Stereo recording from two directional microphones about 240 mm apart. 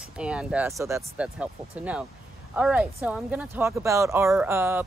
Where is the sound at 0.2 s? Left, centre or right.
Centre.